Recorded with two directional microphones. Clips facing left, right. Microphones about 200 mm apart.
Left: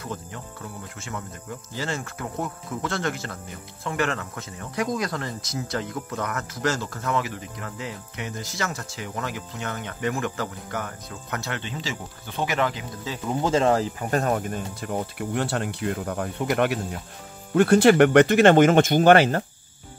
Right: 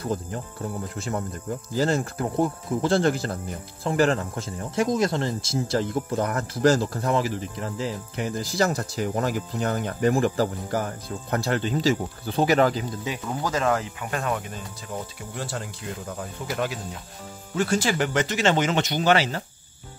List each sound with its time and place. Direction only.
0.0 s speech: 35° right (ahead or behind)
13.3 s speech: 25° left (ahead or behind); by 19.4 s 55° left (ahead or behind)